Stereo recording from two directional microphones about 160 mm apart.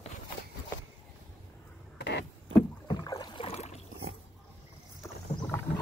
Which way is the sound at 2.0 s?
90° left.